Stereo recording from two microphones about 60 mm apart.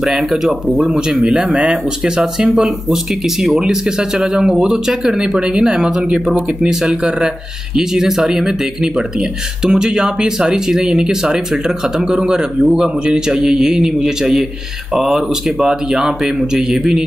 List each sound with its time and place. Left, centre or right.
0.0 s speech: centre
9.7 s speech: centre